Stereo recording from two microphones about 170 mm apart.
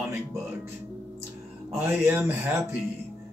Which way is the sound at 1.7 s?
15° right (ahead or behind).